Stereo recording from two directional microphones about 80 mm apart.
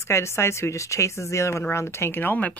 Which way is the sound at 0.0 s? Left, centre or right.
Left.